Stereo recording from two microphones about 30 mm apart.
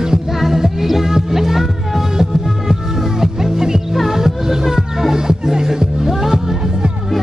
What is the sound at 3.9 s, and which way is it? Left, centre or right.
Music, centre.